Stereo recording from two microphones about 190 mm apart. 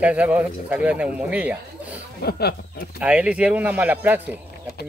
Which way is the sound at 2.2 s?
55° left (ahead or behind).